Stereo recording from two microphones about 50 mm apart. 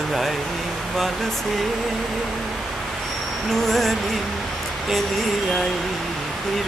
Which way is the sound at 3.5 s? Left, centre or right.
Centre.